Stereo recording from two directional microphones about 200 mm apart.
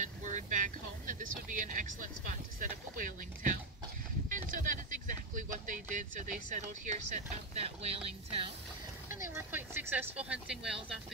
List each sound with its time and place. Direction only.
0.0 s speech: 40° right (ahead or behind)
7.6 s music: 30° right (ahead or behind)
9.1 s speech: 10° right (ahead or behind)